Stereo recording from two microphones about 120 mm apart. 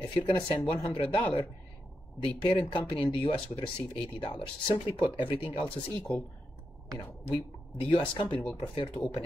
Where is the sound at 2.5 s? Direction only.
40° left (ahead or behind).